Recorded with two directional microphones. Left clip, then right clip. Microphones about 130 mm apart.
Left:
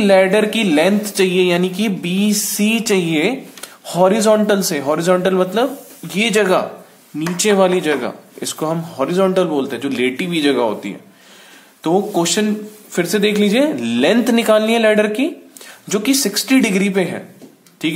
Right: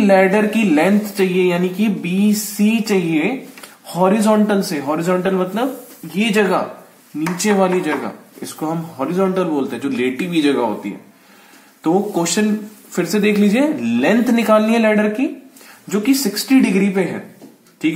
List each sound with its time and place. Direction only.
0.0 s speech: 25° left (ahead or behind)
6.1 s speech: 45° left (ahead or behind)
7.3 s speech: 25° left (ahead or behind)
9.6 s speech: 25° left (ahead or behind)
15.9 s speech: 40° left (ahead or behind)